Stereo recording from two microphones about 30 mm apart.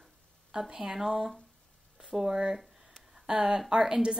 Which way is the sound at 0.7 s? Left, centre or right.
Right.